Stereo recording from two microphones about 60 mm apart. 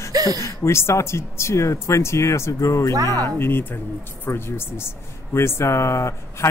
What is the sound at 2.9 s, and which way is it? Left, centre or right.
Speech, right.